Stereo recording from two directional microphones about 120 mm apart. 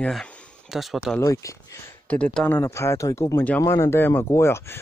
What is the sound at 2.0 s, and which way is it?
Speech, 10° left (ahead or behind).